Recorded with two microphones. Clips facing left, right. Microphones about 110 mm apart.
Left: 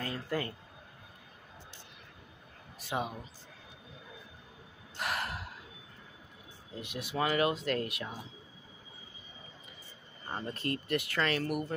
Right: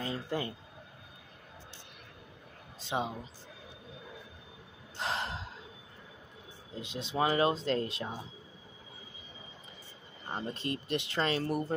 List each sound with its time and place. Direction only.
0.0 s speech: 20° right (ahead or behind)
2.8 s a woman's voice: 25° right (ahead or behind)
4.9 s gasp: 25° right (ahead or behind)
6.7 s speech: 20° right (ahead or behind)
10.3 s speech: 20° right (ahead or behind)